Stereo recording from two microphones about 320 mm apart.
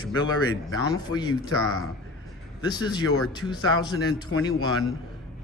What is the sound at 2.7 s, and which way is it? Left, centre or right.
A man's voice, centre.